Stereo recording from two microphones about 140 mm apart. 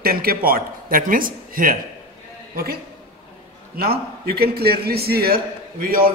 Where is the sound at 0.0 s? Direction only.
90° right.